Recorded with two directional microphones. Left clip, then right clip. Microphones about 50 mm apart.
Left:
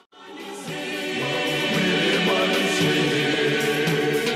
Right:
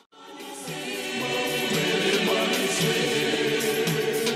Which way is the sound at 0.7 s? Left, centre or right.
Right.